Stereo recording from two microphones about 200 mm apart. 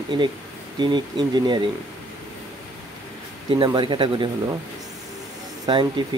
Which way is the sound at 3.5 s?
25° right (ahead or behind).